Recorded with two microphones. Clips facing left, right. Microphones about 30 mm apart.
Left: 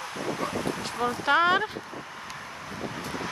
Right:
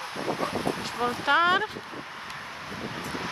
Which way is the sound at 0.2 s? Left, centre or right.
Right.